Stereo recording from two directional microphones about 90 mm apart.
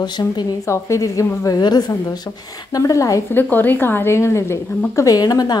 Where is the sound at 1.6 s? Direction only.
50° left (ahead or behind).